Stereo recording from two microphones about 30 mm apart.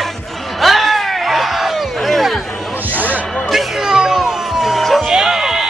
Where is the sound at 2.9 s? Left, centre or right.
Right.